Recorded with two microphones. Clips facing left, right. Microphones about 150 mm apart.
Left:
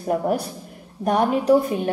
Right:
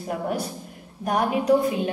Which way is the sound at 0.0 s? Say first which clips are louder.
Left 6 dB; 35° left (ahead or behind).